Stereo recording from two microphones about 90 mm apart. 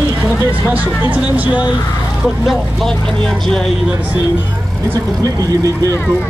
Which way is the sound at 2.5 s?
5° left (ahead or behind).